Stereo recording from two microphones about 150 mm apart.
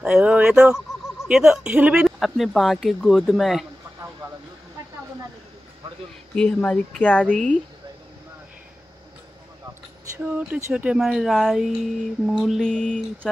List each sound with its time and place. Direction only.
0.0 s speech: 5° right (ahead or behind)
6.3 s a woman's voice: 5° left (ahead or behind)
10.1 s speech: 10° right (ahead or behind)